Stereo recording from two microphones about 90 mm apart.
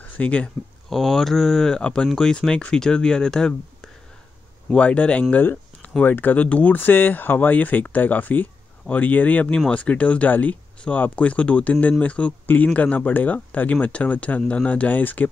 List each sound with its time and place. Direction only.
0.2 s speech: 15° left (ahead or behind)
0.8 s speech: centre (ahead or behind); by 15.2 s 20° left (ahead or behind)